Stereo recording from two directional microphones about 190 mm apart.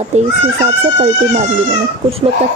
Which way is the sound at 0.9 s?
35° right (ahead or behind).